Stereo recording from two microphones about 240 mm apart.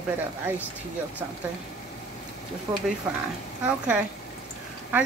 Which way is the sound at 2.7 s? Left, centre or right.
Centre.